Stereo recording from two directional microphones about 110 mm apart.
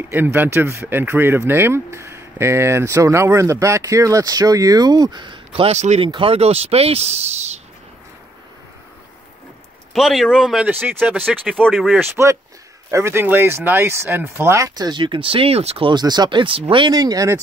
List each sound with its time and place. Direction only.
0.1 s speech: 20° right (ahead or behind); by 6.0 s 85° right
6.0 s speech: 45° right (ahead or behind)
6.3 s speech: 70° right (ahead or behind); by 7.6 s 90° right
9.9 s speech: centre (ahead or behind)
10.7 s speech: 15° right (ahead or behind)
11.5 s speech: centre (ahead or behind)
12.2 s speech: 20° right (ahead or behind)
14.9 s speech: 50° right (ahead or behind); by 15.9 s 65° right (ahead or behind)
15.9 s speech: 40° right (ahead or behind)